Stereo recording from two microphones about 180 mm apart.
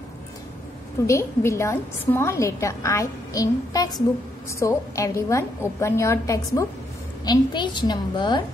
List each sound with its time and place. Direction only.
1.0 s a woman's voice: 15° left (ahead or behind)